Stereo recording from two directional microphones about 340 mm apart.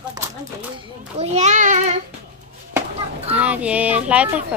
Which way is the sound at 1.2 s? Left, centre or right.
Centre.